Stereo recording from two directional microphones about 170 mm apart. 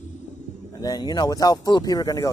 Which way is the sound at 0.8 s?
20° left (ahead or behind).